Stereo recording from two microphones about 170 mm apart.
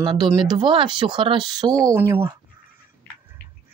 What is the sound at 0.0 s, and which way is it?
Speech, 25° right (ahead or behind).